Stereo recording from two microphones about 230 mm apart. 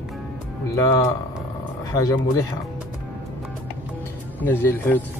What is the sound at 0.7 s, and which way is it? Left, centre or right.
Speech, centre.